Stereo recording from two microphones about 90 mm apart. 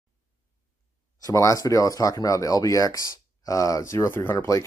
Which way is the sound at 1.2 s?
35° left (ahead or behind).